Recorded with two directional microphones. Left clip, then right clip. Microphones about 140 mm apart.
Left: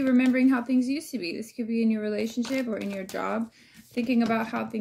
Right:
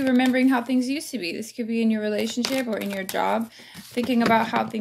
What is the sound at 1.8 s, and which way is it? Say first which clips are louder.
Speech: right 3 dB; 15° left (ahead or behind).